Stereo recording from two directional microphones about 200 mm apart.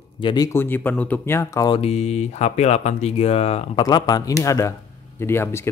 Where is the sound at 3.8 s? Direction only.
20° left (ahead or behind).